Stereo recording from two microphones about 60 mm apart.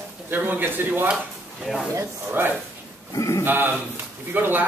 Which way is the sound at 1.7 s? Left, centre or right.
Centre.